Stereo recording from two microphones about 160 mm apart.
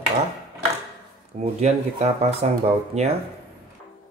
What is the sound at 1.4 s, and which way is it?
Speech, 45° right (ahead or behind).